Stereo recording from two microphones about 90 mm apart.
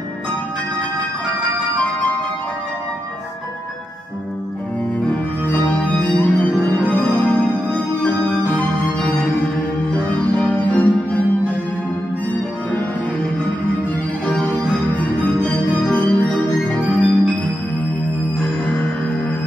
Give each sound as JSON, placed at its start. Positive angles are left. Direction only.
{"t": 5.5, "sound": "music", "side_deg": 15}
{"t": 9.9, "sound": "organ", "side_deg": 15}
{"t": 14.2, "sound": "music", "side_deg": 15}